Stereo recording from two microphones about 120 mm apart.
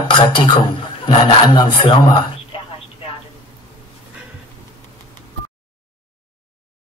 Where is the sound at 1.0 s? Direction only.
40° left (ahead or behind).